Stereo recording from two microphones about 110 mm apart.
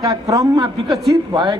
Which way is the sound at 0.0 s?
30° right (ahead or behind).